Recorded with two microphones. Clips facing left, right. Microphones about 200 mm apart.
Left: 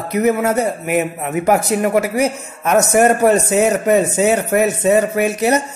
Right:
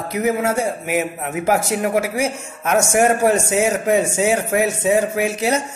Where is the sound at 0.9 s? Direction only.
Centre (ahead or behind).